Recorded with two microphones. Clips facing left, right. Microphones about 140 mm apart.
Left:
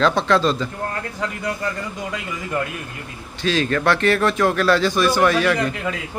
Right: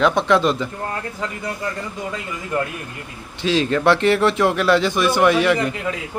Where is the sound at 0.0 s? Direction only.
15° right (ahead or behind).